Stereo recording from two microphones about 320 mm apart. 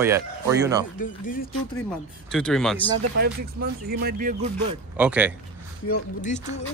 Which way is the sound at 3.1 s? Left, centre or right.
Right.